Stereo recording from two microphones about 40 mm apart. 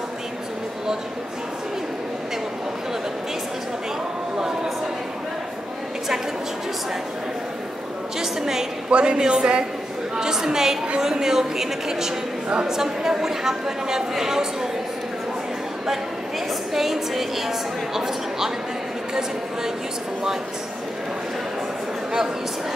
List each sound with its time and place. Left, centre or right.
8.2 s speech: centre
8.9 s speech: right
16.7 s speech: centre